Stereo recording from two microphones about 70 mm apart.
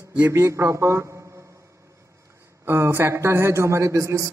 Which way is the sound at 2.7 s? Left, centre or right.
Right.